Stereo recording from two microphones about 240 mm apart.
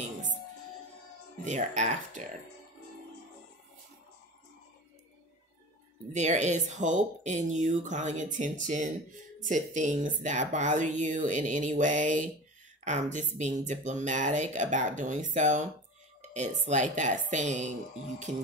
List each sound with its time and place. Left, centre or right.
1.4 s a woman's voice: right
6.1 s a woman's voice: right